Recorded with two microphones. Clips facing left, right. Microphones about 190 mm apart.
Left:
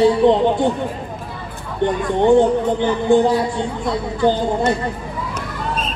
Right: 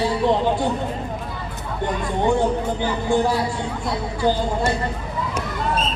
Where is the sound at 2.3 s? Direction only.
20° left (ahead or behind).